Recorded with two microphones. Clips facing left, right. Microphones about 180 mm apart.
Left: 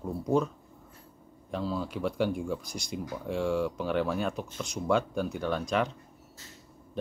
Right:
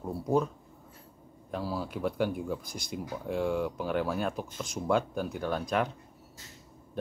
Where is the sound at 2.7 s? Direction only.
55° right (ahead or behind).